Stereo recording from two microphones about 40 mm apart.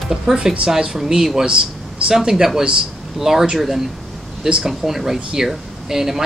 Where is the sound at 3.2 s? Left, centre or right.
Centre.